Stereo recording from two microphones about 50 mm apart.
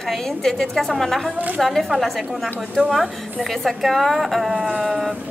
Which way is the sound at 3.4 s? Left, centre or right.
Centre.